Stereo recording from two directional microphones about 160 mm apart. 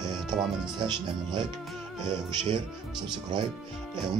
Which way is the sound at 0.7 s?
25° right (ahead or behind).